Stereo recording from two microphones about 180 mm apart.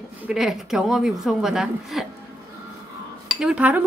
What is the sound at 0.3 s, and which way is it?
A woman's voice, centre (ahead or behind).